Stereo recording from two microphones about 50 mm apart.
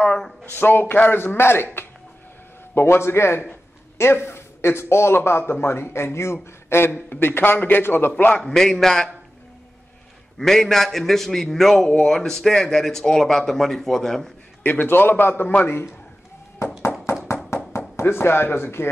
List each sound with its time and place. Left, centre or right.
0.5 s a man's voice: left
8.1 s a man's voice: left
8.4 s speech: centre
10.4 s speech: centre
14.6 s a man's voice: left
17.1 s tap: left
17.5 s knock: left
18.0 s a man's voice: left